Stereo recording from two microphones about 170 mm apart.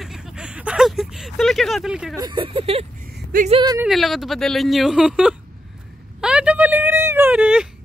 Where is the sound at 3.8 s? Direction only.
Centre (ahead or behind).